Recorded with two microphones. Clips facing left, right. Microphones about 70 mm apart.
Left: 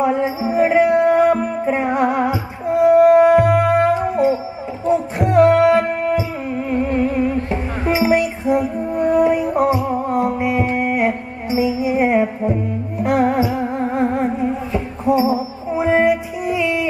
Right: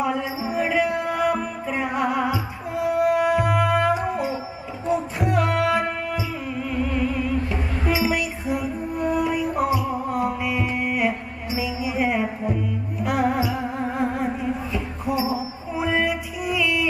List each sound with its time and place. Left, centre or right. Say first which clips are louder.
0.0 s music: left 7 dB; left